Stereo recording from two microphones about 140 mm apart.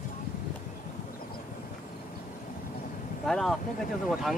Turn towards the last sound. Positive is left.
turn(degrees=0)  # may be behind; listen again after turning